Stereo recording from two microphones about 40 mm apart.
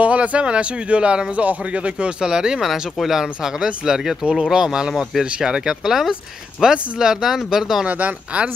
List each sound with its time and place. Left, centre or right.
0.0 s speech: right
2.6 s speech: centre
5.7 s speech: centre
7.8 s speech: right